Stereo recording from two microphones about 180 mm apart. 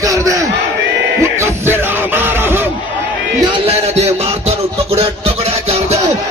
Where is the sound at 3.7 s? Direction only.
35° right (ahead or behind).